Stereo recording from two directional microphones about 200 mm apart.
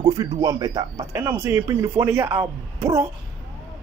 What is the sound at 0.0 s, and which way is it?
Speech, 20° right (ahead or behind).